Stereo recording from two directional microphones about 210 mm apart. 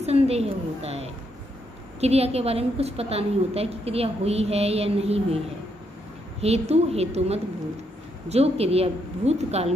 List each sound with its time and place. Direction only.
0.0 s a woman's voice: 30° right (ahead or behind)
6.7 s a woman's voice: 30° right (ahead or behind)